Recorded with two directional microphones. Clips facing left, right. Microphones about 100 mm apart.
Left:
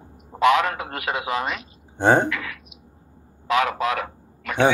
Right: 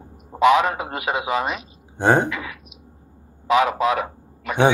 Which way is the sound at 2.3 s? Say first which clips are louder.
Even; 20° right (ahead or behind).